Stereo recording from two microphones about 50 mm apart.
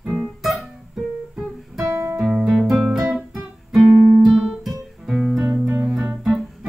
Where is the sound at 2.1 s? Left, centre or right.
Centre.